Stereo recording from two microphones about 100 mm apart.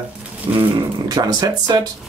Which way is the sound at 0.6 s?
40° right (ahead or behind).